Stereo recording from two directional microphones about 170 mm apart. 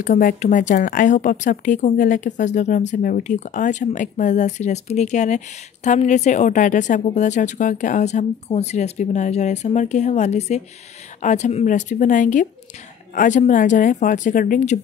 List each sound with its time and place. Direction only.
0.0 s a woman's voice: 55° left (ahead or behind)